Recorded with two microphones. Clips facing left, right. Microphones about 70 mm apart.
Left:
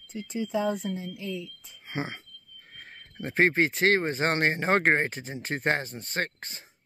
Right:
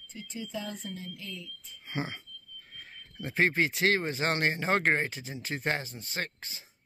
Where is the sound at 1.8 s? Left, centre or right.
Left.